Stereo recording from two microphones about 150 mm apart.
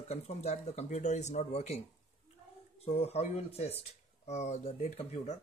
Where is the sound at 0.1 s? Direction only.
45° left (ahead or behind).